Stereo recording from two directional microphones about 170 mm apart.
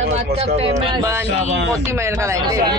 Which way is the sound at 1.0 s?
15° right (ahead or behind).